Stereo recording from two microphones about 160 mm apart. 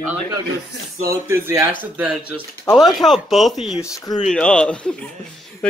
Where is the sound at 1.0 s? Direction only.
15° right (ahead or behind).